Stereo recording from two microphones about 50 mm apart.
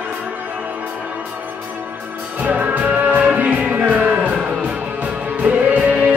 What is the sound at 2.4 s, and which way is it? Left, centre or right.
Music, right.